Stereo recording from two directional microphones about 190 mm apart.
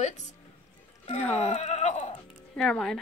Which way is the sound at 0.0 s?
35° left (ahead or behind).